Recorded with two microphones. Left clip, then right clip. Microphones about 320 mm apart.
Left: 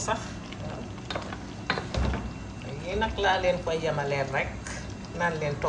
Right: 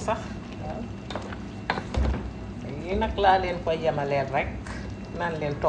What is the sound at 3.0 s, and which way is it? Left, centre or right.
A woman's voice, centre.